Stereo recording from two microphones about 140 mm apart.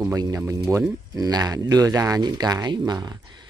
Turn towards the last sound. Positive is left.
turn(degrees=-30)  # may be behind; listen again after turning